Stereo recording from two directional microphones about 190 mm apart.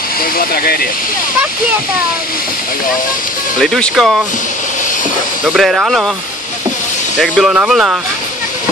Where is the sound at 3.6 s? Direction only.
Centre (ahead or behind).